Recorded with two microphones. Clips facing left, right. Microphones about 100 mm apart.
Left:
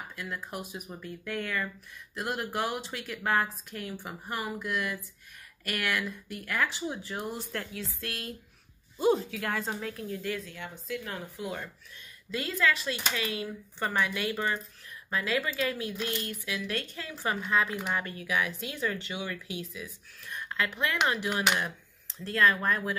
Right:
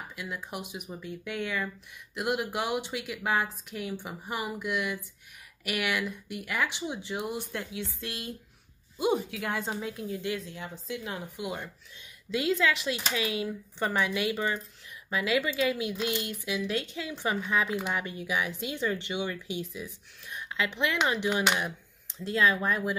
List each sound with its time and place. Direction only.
0.1 s speech: 15° right (ahead or behind)
10.4 s a woman's voice: 30° right (ahead or behind)
11.1 s speech: 20° right (ahead or behind)